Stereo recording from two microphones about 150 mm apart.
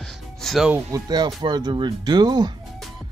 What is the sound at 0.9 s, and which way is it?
Speech, 25° right (ahead or behind).